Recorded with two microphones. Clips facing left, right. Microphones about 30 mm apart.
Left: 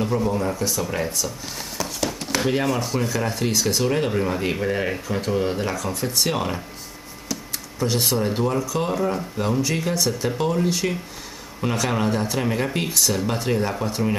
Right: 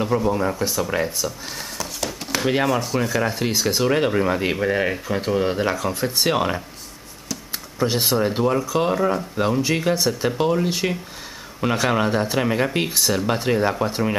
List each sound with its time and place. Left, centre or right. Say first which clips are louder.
0.0 s speech: right 2 dB; centre
1.8 s a sound: left 4 dB; centre
2.6 s speech: right 2 dB; centre
7.8 s speech: right 2 dB; centre